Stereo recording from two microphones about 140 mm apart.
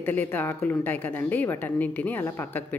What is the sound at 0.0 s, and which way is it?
Speech, 15° left (ahead or behind).